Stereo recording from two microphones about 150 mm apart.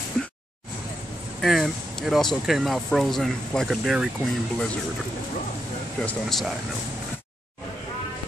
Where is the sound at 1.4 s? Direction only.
Centre (ahead or behind).